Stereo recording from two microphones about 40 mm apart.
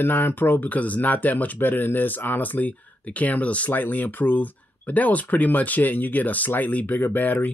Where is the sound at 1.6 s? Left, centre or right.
Left.